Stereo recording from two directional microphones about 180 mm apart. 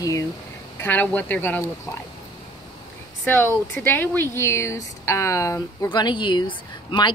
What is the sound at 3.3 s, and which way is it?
A woman's voice, 10° left (ahead or behind).